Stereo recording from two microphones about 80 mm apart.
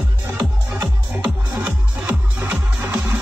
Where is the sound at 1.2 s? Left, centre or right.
Centre.